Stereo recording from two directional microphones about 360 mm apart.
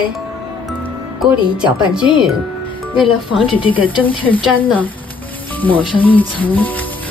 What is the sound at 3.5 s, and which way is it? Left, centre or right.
Speech, centre.